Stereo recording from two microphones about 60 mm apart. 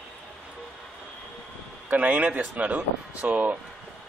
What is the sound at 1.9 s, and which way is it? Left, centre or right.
Speech, right.